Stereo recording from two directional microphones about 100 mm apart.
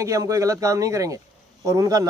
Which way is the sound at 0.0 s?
30° right (ahead or behind).